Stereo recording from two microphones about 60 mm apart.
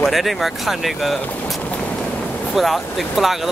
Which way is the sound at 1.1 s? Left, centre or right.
Left.